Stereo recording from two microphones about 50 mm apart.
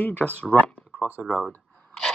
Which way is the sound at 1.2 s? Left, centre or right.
Centre.